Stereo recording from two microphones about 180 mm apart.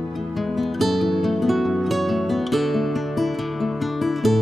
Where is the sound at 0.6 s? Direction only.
Centre (ahead or behind).